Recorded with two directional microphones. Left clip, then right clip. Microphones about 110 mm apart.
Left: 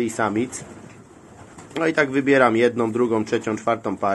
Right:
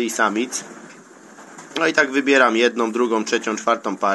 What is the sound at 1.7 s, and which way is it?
Speech, 25° left (ahead or behind).